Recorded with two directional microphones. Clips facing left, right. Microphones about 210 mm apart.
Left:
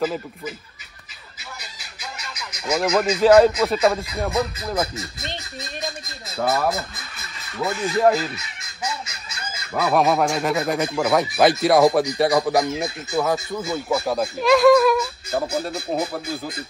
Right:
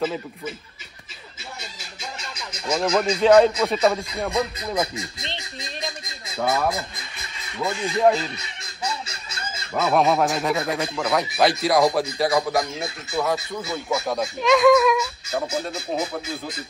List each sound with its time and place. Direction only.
0.0 s speech: centre (ahead or behind)
1.6 s a sound: 25° right (ahead or behind)
2.6 s speech: 5° left (ahead or behind)
6.2 s speech: centre (ahead or behind)
7.8 s speech: centre (ahead or behind)
9.8 s speech: centre (ahead or behind)